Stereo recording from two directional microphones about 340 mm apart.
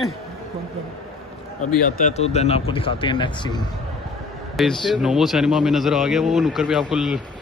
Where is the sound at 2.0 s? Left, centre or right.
Left.